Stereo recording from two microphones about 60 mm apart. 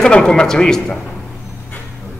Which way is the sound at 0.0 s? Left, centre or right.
Centre.